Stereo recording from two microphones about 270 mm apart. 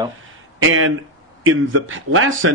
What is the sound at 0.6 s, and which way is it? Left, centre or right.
A man's voice, right.